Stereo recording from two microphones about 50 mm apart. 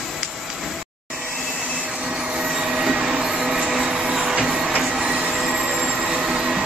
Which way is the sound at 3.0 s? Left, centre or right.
Centre.